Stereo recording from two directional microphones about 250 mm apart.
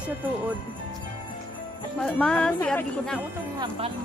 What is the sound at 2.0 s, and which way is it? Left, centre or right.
Speech, centre.